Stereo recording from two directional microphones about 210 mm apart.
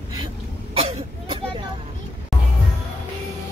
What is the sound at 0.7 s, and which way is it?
Vehicle, 30° right (ahead or behind).